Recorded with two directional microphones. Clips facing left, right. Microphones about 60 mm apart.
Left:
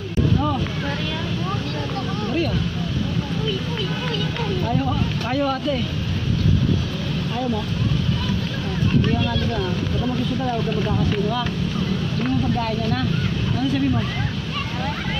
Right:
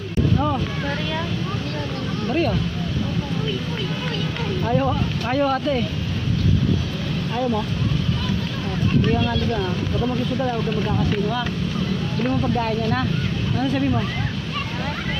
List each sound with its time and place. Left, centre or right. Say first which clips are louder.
4.6 s speech: right 5 dB; right
9.1 s speech: right 1 dB; centre
12.5 s speech: right 1 dB; right